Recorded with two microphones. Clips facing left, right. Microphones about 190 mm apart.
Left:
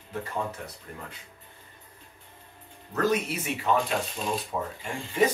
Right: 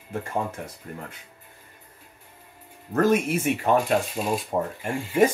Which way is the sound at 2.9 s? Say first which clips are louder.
Right 5 dB; 50° right (ahead or behind).